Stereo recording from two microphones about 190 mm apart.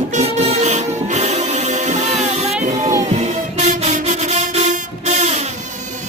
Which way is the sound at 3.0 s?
40° right (ahead or behind).